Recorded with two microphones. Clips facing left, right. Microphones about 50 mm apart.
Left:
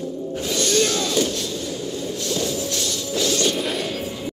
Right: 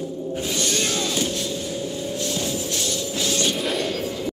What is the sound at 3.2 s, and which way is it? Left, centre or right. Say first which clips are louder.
Shatter: left 3 dB; right.